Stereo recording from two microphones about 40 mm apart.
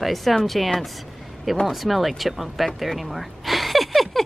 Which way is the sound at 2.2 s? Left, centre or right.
Centre.